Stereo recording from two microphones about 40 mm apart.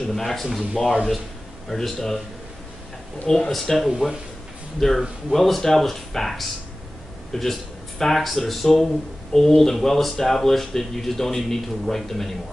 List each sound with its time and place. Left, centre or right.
0.1 s a man's voice: centre
3.3 s a man's voice: centre
4.0 s a man's voice: centre
4.7 s a man's voice: centre